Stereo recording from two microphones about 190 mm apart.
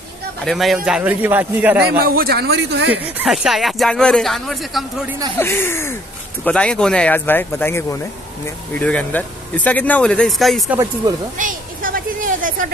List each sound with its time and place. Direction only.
0.4 s speech: centre (ahead or behind)
1.9 s speech: 55° right (ahead or behind)
3.2 s speech: centre (ahead or behind)
5.4 s speech: 15° left (ahead or behind)
11.3 s a sound: 45° right (ahead or behind)